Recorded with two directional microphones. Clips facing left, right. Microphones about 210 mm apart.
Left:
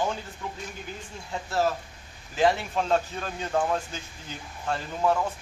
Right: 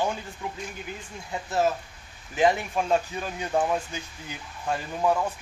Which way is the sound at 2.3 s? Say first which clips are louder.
Right 1 dB; 15° right (ahead or behind).